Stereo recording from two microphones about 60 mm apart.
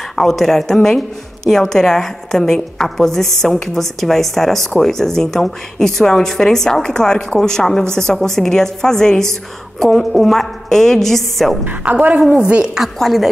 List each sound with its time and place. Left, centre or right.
0.1 s a woman's voice: centre
11.6 s a woman's voice: right
12.7 s a woman's voice: centre